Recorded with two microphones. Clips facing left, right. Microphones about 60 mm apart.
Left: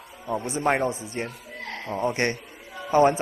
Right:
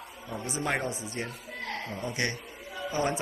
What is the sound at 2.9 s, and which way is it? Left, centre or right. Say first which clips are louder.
Speech: left 11 dB; left.